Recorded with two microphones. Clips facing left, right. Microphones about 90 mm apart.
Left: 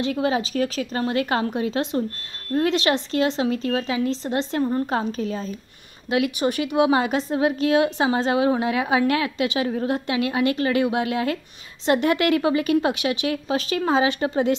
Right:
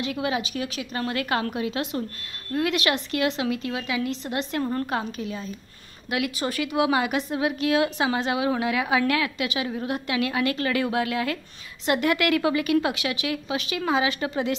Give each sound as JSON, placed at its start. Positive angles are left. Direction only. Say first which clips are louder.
{"t": 0.0, "sound": "a woman's voice", "louder": "left 4 dB", "side_deg": 35}
{"t": 9.9, "sound": "a woman's voice", "louder": "left 3 dB", "side_deg": 25}